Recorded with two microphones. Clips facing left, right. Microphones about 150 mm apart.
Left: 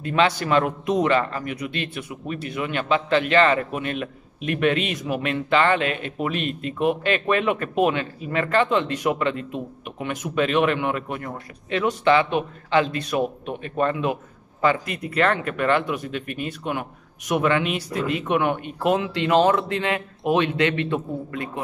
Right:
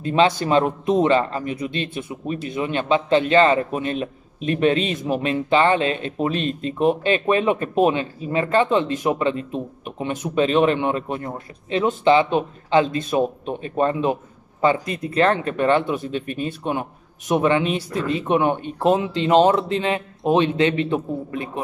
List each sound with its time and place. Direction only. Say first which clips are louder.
0.0 s a man's voice: right 3 dB; 25° right (ahead or behind)